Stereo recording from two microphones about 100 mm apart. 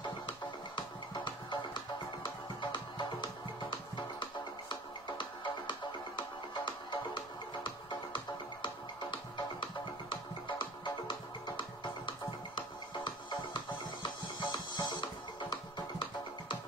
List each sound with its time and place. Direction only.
0.0 s music: 50° left (ahead or behind)